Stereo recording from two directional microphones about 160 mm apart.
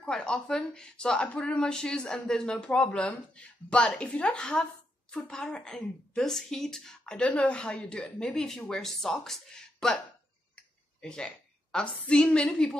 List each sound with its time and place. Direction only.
0.0 s a woman's voice: 5° left (ahead or behind)
10.5 s a sound: 5° left (ahead or behind)
11.7 s a woman's voice: 5° left (ahead or behind)